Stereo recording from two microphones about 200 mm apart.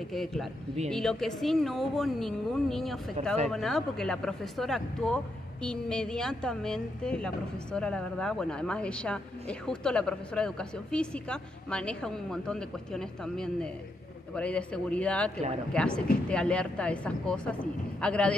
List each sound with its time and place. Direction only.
0.1 s speech: centre (ahead or behind)